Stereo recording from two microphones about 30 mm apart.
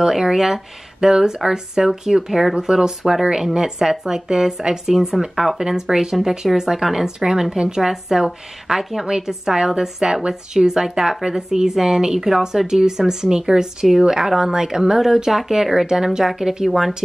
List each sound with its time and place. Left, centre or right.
0.0 s speech: centre
5.6 s speech: right
8.2 s speech: right